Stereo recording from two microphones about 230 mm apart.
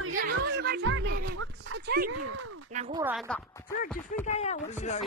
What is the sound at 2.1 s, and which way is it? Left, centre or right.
Speech, right.